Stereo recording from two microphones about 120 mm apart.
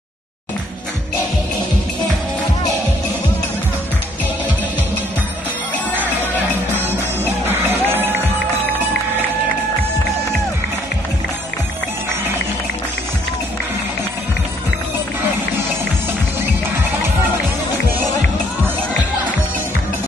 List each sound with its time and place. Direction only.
6.7 s music: 15° right (ahead or behind)